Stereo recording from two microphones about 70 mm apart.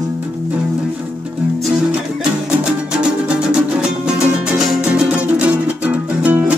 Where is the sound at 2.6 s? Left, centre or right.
Centre.